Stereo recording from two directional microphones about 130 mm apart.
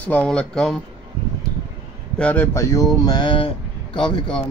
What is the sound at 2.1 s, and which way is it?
Speech, 10° left (ahead or behind).